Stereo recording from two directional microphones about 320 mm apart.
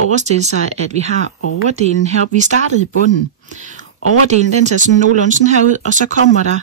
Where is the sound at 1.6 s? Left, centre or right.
Right.